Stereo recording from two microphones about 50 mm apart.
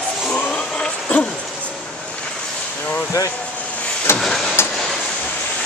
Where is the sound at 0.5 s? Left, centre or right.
Centre.